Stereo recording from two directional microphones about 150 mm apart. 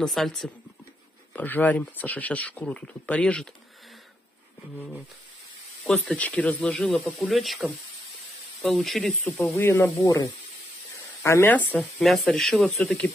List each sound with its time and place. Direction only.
0.0 s speech: centre (ahead or behind)
4.7 s speech: 10° left (ahead or behind)
9.6 s speech: 15° left (ahead or behind)
11.8 s speech: centre (ahead or behind)